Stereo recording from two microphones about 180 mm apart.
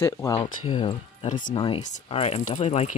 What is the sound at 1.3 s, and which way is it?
Speech, 45° left (ahead or behind).